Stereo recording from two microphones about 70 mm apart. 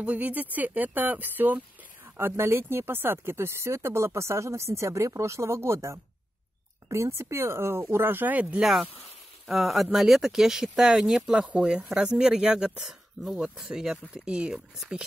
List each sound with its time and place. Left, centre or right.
0.0 s speech: right
8.5 s speech: centre